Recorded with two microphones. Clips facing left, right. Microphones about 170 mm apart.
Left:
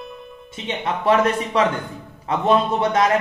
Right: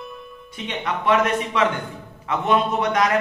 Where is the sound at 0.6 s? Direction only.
30° left (ahead or behind).